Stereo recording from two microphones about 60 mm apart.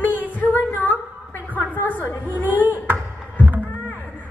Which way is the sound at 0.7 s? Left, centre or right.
Left.